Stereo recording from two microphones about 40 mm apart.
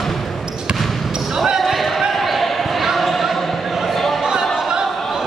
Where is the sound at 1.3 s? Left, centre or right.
Centre.